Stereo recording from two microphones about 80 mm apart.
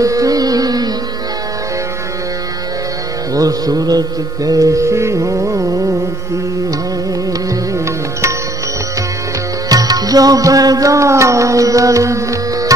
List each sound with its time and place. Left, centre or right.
0.0 s music: right
3.3 s music: right
4.5 s carnatic music: right
7.7 s music: right
9.7 s music: right